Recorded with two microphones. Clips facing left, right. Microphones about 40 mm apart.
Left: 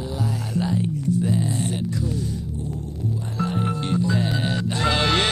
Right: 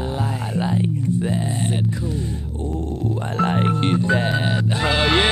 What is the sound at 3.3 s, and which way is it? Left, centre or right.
Music, right.